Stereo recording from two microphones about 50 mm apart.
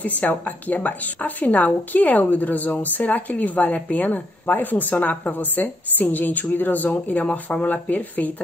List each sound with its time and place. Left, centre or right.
0.0 s a woman's voice: left